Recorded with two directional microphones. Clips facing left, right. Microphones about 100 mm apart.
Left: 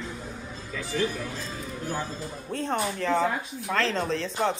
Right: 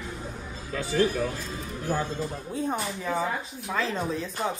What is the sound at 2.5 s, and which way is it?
Speech, 65° left (ahead or behind).